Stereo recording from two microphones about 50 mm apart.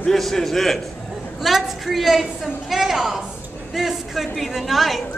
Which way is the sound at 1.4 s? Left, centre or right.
Centre.